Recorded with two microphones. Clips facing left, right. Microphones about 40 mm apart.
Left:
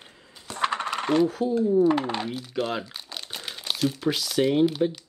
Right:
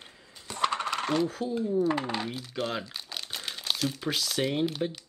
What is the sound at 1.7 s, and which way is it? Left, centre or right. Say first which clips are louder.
Speech: left 5 dB; centre.